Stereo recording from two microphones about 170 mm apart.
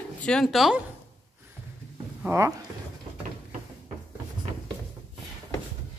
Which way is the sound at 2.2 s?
15° right (ahead or behind).